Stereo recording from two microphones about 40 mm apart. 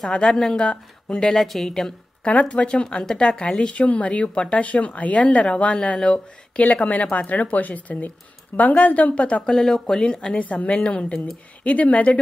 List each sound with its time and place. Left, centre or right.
0.1 s speech: centre
0.7 s speech: left
1.3 s speech: centre
2.2 s speech: left
3.8 s speech: left
6.6 s a woman's voice: left
9.5 s speech: centre
10.3 s speech: left